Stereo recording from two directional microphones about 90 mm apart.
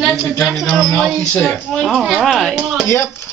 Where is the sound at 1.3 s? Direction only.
20° left (ahead or behind).